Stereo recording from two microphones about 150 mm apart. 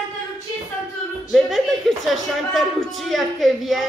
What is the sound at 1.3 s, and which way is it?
Speech, centre (ahead or behind).